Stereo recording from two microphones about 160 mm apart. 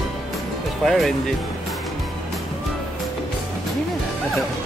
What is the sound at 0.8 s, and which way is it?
Speech, centre (ahead or behind).